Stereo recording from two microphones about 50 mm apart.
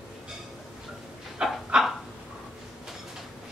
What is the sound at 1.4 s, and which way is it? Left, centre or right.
Dog, centre.